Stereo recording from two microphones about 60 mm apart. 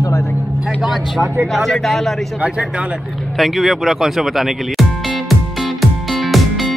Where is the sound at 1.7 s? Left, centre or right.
Centre.